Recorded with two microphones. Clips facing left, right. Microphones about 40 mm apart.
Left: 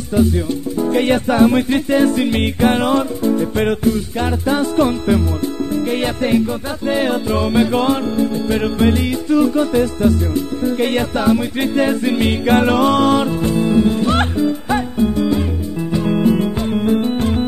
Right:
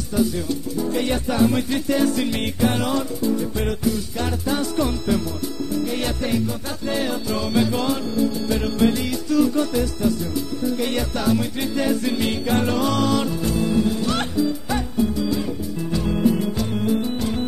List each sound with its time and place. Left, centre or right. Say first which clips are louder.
0.2 s music: left 5 dB; left